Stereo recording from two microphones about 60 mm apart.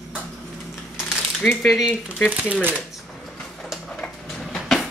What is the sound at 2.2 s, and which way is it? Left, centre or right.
Speech, right.